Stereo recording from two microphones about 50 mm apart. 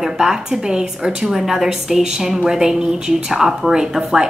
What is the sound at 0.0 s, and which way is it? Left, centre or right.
A woman's voice, centre.